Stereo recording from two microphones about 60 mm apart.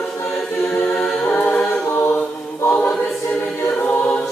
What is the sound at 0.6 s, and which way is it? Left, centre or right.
A capella, centre.